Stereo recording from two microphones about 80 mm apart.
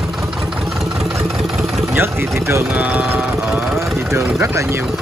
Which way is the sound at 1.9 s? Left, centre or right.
Right.